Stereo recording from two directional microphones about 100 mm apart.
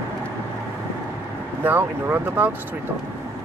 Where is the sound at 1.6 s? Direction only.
20° right (ahead or behind).